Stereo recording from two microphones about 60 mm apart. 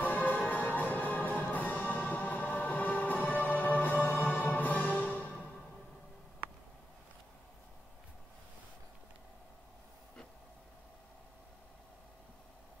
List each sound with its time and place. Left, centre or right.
0.0 s music: left